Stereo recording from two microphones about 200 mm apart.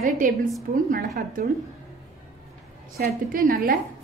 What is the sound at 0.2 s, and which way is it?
A woman's voice, 40° right (ahead or behind).